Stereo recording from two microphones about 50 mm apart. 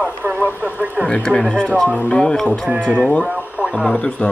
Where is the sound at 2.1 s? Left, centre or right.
Centre.